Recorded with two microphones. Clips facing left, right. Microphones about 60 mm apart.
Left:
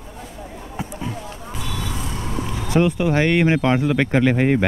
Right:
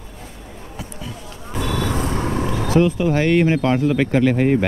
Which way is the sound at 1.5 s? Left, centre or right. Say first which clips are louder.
Right 8 dB; right.